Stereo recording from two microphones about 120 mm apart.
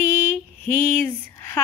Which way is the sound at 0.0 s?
15° left (ahead or behind).